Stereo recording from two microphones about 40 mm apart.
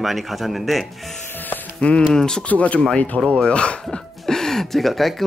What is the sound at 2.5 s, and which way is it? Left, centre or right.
Speech, left.